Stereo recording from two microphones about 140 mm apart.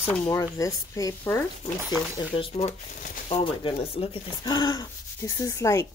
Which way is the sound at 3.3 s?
40° left (ahead or behind).